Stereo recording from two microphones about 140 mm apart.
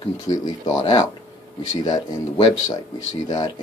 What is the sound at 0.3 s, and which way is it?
Speech, 30° left (ahead or behind).